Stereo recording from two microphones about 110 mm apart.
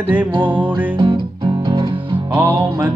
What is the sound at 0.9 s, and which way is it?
Music, 50° right (ahead or behind).